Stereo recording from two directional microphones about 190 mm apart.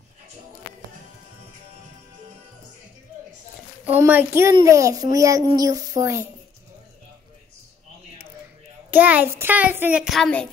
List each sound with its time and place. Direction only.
3.8 s a child's voice: 10° right (ahead or behind)
8.9 s a child's voice: 10° right (ahead or behind)